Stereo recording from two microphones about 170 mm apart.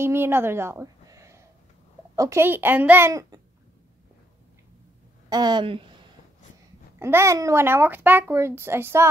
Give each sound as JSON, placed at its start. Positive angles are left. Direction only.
{"t": 0.0, "sound": "a woman's voice", "side_deg": -15}
{"t": 5.3, "sound": "speech", "side_deg": -25}
{"t": 7.0, "sound": "a child's voice", "side_deg": -15}